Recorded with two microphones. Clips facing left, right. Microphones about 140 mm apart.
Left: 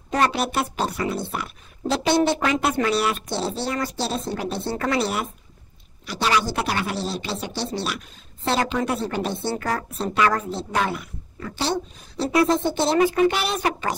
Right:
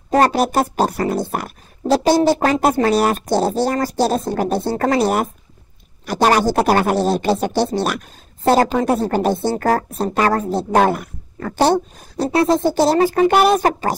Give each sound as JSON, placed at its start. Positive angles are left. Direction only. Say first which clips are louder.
{"t": 0.1, "sound": "speech", "louder": "right 7 dB", "side_deg": -40}
{"t": 12.3, "sound": "a woman's voice", "louder": "right 4 dB", "side_deg": -30}